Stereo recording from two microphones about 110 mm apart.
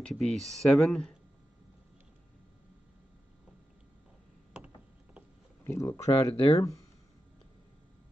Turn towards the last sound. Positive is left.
turn(degrees=30)  # may be behind; listen again after turning